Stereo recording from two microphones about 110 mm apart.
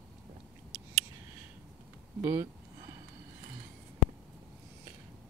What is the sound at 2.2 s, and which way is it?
Speech, 25° right (ahead or behind).